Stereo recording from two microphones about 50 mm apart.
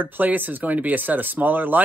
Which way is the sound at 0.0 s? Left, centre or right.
Right.